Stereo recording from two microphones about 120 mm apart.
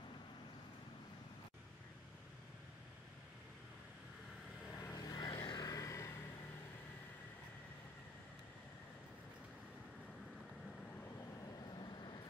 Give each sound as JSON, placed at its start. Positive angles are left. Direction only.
{"t": 4.7, "sound": "vehicle", "side_deg": 30}
{"t": 11.7, "sound": "vehicle", "side_deg": 40}